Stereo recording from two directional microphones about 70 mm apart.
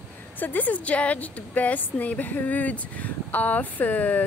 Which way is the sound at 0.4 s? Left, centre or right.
Left.